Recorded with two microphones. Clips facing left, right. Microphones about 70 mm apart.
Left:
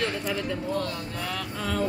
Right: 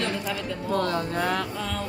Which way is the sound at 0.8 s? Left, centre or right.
Right.